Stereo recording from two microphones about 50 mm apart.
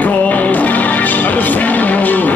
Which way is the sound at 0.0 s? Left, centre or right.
Left.